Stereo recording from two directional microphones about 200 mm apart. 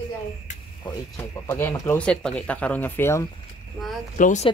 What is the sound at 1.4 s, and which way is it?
Speech, 10° left (ahead or behind).